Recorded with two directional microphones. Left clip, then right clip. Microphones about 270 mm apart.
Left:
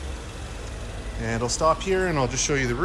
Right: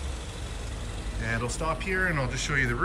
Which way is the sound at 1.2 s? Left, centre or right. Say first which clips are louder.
Left 8 dB; centre.